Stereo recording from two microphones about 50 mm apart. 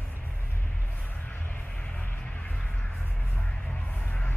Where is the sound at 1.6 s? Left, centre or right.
Left.